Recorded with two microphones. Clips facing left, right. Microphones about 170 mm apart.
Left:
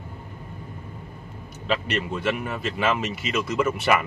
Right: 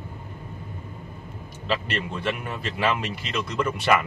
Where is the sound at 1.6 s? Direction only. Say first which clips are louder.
Left 2 dB; centre (ahead or behind).